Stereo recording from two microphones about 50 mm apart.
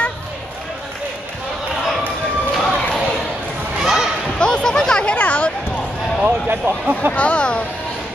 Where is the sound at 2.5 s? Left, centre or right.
Centre.